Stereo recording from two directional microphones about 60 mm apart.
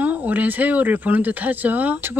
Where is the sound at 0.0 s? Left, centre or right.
Right.